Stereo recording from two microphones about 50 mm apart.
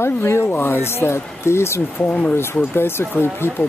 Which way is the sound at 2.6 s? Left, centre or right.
Left.